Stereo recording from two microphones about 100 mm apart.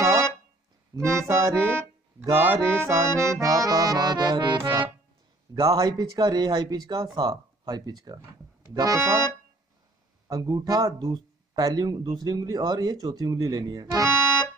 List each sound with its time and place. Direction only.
0.0 s music: 30° right (ahead or behind)
0.9 s accordion: 30° right (ahead or behind); by 4.9 s 55° right (ahead or behind)
5.5 s speech: 40° right (ahead or behind)
9.0 s accordion: 25° right (ahead or behind)
10.2 s speech: 40° right (ahead or behind)
14.0 s music: 25° right (ahead or behind)